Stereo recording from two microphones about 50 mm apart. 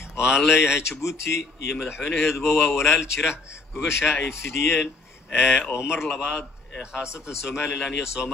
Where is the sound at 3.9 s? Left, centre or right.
Left.